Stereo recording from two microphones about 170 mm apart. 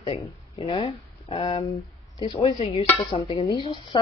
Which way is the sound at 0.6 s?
35° left (ahead or behind).